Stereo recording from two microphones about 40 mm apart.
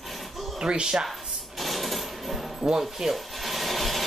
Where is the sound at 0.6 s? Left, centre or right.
Centre.